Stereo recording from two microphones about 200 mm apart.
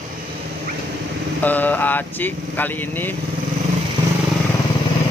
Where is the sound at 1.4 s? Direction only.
10° left (ahead or behind).